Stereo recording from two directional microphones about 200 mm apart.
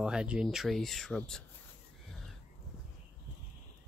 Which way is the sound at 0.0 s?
5° right (ahead or behind).